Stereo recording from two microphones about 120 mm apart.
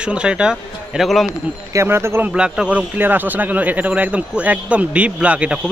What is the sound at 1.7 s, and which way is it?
Speech, 20° right (ahead or behind).